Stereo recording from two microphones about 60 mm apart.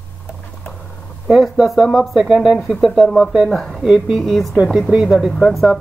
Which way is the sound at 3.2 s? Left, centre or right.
Centre.